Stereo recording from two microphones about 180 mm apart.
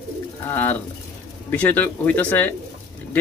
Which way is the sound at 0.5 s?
10° left (ahead or behind).